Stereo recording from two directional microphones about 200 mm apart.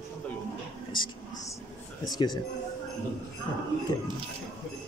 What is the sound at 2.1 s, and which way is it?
Speech, 20° left (ahead or behind).